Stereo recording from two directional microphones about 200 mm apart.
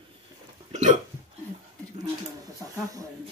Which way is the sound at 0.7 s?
35° right (ahead or behind).